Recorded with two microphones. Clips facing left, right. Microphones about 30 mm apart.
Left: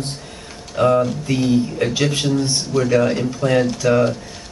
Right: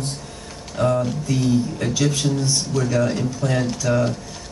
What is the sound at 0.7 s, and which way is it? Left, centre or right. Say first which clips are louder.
A man's voice: left 5 dB; left.